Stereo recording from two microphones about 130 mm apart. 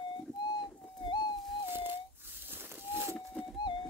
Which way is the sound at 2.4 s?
15° right (ahead or behind).